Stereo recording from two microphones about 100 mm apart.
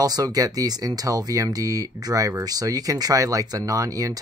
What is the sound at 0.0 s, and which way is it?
Speech, 40° right (ahead or behind).